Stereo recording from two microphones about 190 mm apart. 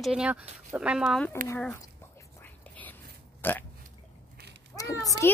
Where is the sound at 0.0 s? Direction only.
5° right (ahead or behind).